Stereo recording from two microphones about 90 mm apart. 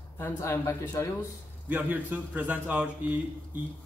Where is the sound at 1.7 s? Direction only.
20° right (ahead or behind).